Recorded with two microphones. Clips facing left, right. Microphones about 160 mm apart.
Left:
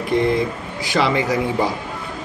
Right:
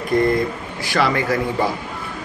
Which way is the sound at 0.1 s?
45° right (ahead or behind).